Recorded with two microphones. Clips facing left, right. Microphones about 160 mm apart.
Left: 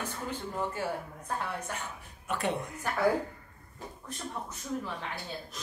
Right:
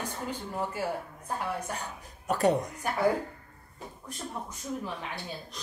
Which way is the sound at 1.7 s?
40° right (ahead or behind).